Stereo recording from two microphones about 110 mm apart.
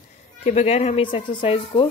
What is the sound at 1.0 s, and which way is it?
Speech, 50° left (ahead or behind).